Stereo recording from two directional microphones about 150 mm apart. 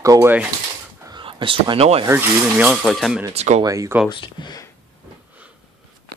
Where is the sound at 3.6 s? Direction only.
20° right (ahead or behind).